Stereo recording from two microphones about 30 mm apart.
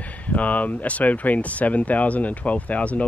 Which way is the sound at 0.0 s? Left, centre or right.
Left.